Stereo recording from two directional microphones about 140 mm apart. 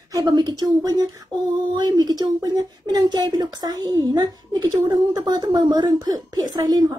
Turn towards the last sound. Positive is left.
turn(degrees=-25)  # may be behind; listen again after turning